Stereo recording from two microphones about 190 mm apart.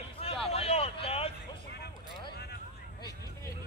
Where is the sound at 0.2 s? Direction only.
30° left (ahead or behind).